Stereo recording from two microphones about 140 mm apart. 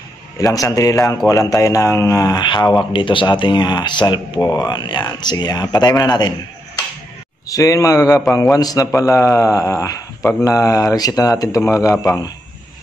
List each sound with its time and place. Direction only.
0.4 s a man's voice: 25° left (ahead or behind)
7.4 s a man's voice: 25° left (ahead or behind)